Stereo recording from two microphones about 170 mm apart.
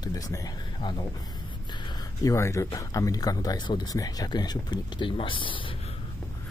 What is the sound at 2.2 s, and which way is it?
Speech, 20° left (ahead or behind).